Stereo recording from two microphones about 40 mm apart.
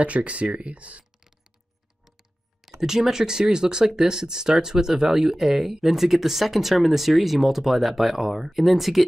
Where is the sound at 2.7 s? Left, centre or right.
Centre.